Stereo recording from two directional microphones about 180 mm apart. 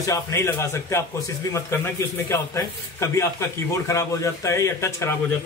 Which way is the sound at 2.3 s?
15° left (ahead or behind).